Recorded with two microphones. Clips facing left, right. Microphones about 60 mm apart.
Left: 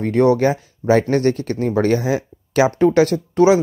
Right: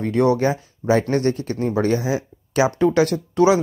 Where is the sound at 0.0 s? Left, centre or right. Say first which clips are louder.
Left 3 dB; left.